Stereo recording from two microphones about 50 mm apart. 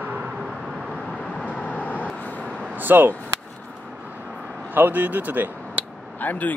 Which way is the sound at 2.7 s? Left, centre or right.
Right.